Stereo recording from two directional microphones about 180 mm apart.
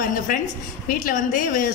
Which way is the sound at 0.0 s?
50° left (ahead or behind).